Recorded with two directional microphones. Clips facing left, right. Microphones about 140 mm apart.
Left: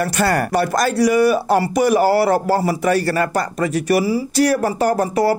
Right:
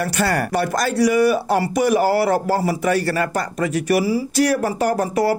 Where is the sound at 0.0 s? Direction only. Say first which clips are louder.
Left 2 dB; 40° left (ahead or behind).